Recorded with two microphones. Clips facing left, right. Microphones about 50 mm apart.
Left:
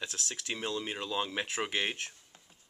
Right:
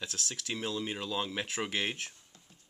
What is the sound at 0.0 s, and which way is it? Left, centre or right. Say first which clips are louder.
Speech: even; centre.